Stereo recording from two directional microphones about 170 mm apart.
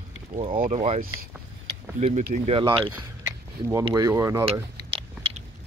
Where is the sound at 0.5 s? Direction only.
55° right (ahead or behind).